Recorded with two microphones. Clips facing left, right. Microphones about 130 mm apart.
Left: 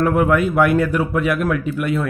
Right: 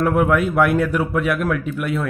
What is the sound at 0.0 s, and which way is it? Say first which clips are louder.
A man's voice: left 1 dB; centre (ahead or behind).